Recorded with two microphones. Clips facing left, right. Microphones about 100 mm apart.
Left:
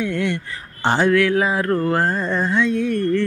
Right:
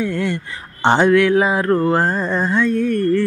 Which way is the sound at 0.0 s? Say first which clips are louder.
Right 1 dB; 5° right (ahead or behind).